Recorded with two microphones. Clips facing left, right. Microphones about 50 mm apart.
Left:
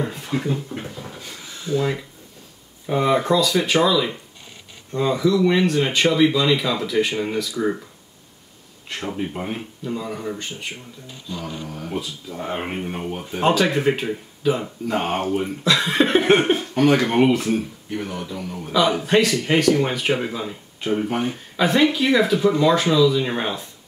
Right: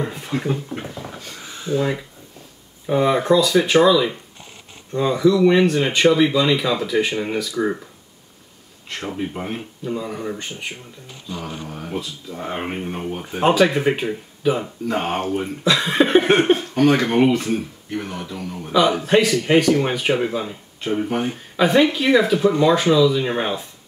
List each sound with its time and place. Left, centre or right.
0.0 s a sound: centre
1.6 s speech: centre
8.9 s speech: centre
11.5 s speech: right
11.9 s speech: centre
13.3 s speech: centre
22.4 s speech: centre
22.7 s speech: centre